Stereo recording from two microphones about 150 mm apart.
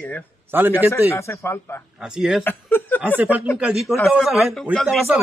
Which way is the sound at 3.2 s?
10° right (ahead or behind).